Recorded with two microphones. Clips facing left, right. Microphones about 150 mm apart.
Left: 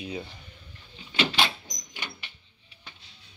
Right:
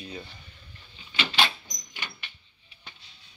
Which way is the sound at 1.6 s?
20° left (ahead or behind).